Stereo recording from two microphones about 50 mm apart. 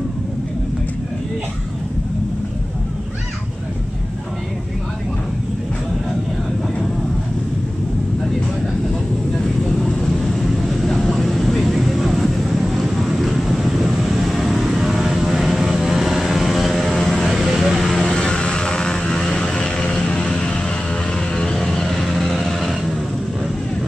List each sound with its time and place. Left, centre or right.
9.8 s vehicle: centre
17.9 s vehicle: centre
21.4 s music: centre